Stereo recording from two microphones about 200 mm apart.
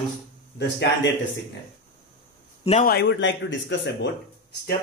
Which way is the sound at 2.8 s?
60° left (ahead or behind).